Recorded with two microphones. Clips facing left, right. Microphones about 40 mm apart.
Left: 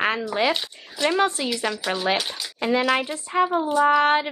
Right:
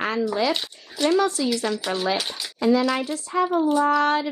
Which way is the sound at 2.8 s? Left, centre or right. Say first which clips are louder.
Left 1 dB; left.